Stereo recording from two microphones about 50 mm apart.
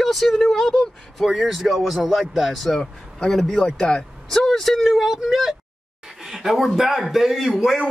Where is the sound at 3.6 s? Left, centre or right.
Centre.